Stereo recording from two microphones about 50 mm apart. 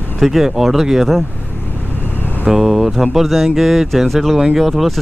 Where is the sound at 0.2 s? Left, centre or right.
Centre.